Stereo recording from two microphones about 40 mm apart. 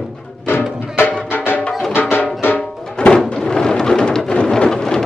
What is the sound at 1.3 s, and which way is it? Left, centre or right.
Music, left.